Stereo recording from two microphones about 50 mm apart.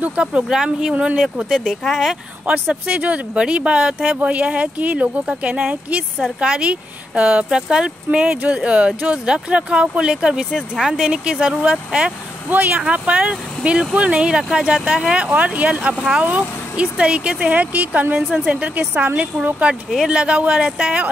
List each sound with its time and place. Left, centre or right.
0.0 s speech: right
1.2 s speech: centre
2.7 s speech: right
12.4 s speech: right; by 15.2 s centre
15.2 s speech: right
18.1 s speech: centre
19.3 s speech: centre